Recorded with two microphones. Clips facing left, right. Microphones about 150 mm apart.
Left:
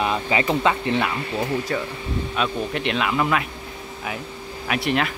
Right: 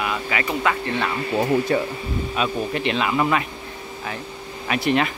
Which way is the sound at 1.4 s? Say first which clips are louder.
Right 6 dB; 30° right (ahead or behind).